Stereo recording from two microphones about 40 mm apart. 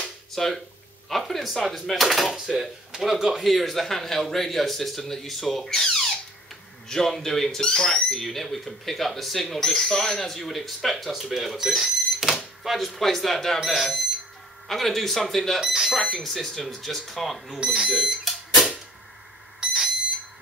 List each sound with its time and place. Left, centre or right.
0.3 s speech: centre
3.3 s a man's voice: centre
14.7 s a man's voice: centre
15.6 s speech: centre
16.1 s a man's voice: centre
17.7 s fire alarm: centre
19.6 s alarm: centre